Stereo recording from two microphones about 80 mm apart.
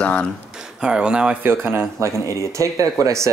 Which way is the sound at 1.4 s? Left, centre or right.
Right.